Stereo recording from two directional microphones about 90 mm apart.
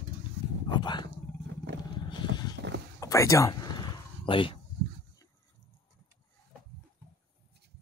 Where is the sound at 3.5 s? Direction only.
50° left (ahead or behind); by 4.5 s 70° left (ahead or behind).